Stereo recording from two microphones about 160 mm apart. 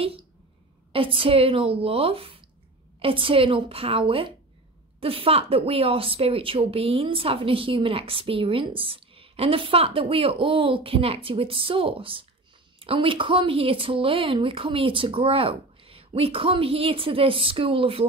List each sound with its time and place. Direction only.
0.9 s a woman's voice: 35° right (ahead or behind)